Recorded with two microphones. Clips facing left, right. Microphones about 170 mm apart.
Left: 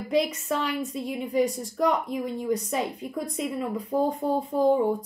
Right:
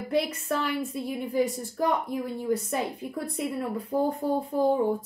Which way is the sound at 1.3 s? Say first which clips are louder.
Left 2 dB; 85° left.